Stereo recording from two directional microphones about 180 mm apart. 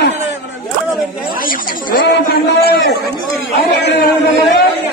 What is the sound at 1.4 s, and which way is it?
A man's voice, 50° left (ahead or behind).